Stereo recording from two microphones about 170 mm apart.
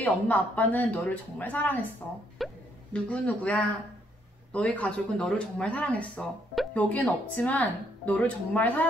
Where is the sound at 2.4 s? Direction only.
Centre (ahead or behind).